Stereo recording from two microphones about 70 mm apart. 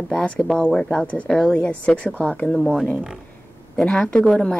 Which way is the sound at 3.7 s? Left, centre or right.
Centre.